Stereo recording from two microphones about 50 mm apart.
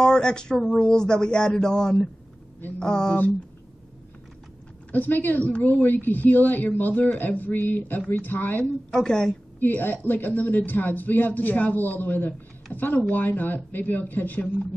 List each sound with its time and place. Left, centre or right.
0.0 s a sound: centre
0.7 s speech: centre
4.9 s a man's voice: left
8.9 s speech: centre
9.6 s a woman's voice: left